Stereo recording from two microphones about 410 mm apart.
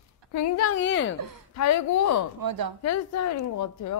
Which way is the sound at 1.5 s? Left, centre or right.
Left.